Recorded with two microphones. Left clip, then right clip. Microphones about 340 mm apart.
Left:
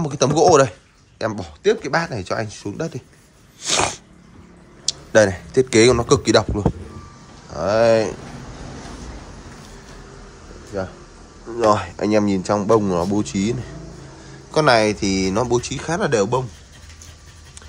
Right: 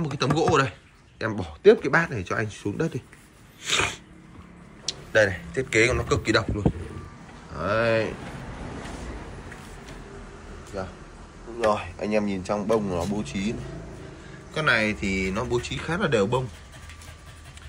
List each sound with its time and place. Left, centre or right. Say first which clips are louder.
0.0 s speech: left 9 dB; centre
3.6 s sneeze: left 5 dB; centre
4.8 s a sound: left 6 dB; centre
5.5 s speech: left 8 dB; centre
7.5 s speech: left 8 dB; centre
11.7 s speech: left 8 dB; left
14.5 s speech: left 8 dB; centre